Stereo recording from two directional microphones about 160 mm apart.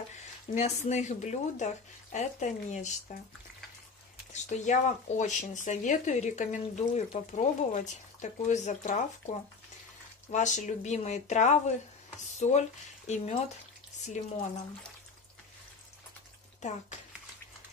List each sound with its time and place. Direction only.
0.1 s speech: 45° left (ahead or behind)
4.3 s speech: 45° left (ahead or behind)
10.3 s speech: 50° left (ahead or behind)
16.6 s speech: 50° left (ahead or behind)